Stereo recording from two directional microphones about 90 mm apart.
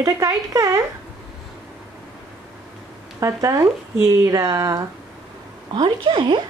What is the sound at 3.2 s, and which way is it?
Speech, 35° right (ahead or behind).